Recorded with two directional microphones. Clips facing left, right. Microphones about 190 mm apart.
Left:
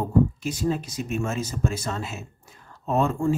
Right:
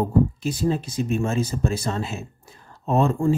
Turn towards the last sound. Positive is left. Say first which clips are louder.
# right 3 dB
turn(degrees=-35)  # may be behind; listen again after turning